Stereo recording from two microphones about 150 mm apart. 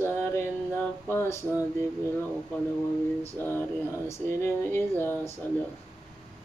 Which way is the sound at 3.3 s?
15° left (ahead or behind).